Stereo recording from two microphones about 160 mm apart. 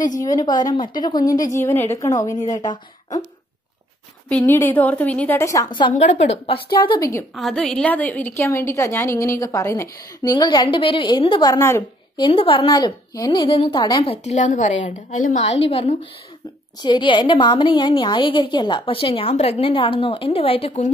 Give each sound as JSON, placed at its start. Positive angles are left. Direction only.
{"t": 0.5, "sound": "a woman's voice", "side_deg": 25}
{"t": 4.3, "sound": "a woman's voice", "side_deg": 10}
{"t": 5.9, "sound": "a woman's voice", "side_deg": 45}
{"t": 7.3, "sound": "a woman's voice", "side_deg": 5}
{"t": 12.2, "sound": "a woman's voice", "side_deg": 35}